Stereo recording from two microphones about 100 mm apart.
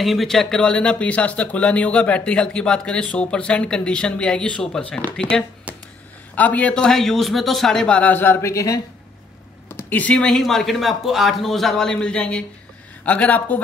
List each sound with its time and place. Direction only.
0.0 s speech: centre (ahead or behind)
5.7 s a sound: 15° right (ahead or behind)
6.3 s speech: 15° left (ahead or behind); by 8.8 s 35° left (ahead or behind)
9.7 s speech: 20° left (ahead or behind)